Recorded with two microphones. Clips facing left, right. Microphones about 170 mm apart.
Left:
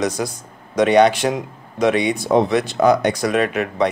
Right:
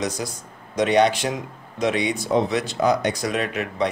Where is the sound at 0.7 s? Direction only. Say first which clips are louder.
Left 5 dB; 60° left (ahead or behind).